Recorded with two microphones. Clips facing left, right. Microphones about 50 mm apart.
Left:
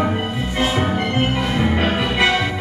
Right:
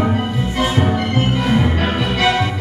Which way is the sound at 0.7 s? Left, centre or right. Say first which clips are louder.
Right 2 dB; centre.